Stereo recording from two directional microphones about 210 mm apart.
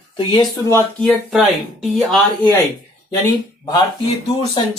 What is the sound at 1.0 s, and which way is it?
Speech, centre (ahead or behind).